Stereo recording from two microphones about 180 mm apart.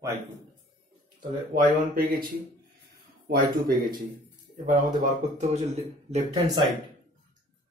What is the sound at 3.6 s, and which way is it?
Speech, 50° right (ahead or behind).